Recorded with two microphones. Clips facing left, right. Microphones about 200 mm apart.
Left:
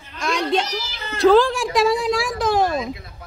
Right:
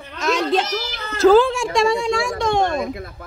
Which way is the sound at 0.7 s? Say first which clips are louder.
Right 4 dB; 55° right (ahead or behind).